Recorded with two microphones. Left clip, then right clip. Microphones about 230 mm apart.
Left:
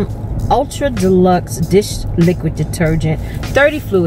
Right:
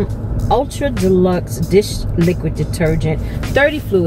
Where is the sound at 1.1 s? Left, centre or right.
Centre.